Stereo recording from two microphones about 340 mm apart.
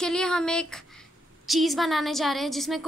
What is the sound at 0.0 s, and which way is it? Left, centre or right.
A woman's voice, centre.